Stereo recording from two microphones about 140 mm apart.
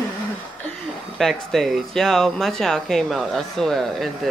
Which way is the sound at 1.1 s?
Centre (ahead or behind).